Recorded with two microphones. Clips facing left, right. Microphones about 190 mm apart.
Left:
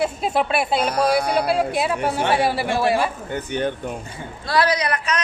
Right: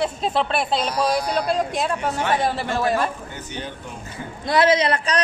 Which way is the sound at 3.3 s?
55° left (ahead or behind).